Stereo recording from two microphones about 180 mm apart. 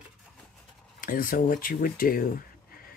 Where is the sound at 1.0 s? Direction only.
50° left (ahead or behind).